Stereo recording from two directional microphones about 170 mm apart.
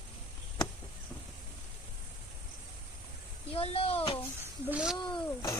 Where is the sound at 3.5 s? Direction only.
35° left (ahead or behind).